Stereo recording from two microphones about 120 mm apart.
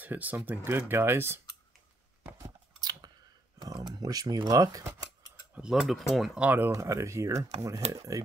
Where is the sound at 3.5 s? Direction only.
35° right (ahead or behind).